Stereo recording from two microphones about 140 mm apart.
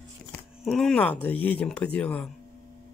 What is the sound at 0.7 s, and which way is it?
Speech, centre (ahead or behind).